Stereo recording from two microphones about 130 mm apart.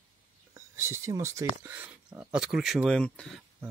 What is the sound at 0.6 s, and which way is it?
Speech, 20° right (ahead or behind).